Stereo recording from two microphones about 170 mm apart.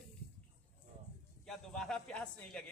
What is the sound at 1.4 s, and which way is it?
A man's voice, centre (ahead or behind).